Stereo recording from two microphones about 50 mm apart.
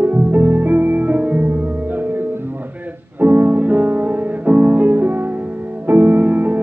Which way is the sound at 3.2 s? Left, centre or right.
Right.